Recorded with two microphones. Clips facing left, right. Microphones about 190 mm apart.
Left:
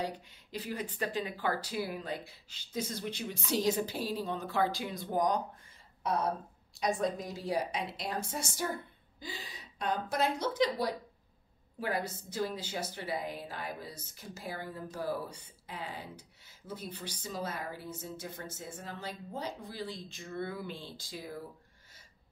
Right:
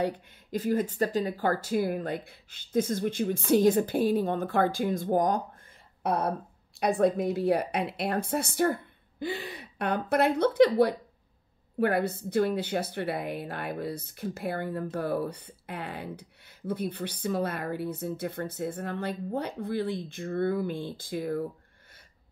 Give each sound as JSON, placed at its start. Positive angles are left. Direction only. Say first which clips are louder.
{"t": 0.0, "sound": "speech", "louder": "right 8 dB", "side_deg": -50}
{"t": 6.0, "sound": "a woman's voice", "louder": "right 4 dB", "side_deg": -60}